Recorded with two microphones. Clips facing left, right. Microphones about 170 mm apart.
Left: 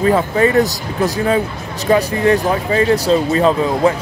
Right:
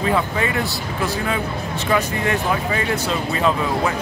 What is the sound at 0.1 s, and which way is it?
Speech, 40° left (ahead or behind).